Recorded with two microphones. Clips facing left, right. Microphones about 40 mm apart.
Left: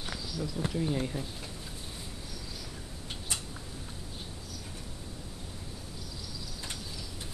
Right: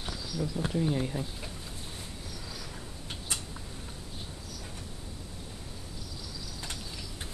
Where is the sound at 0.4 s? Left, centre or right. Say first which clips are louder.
Right 2 dB; centre.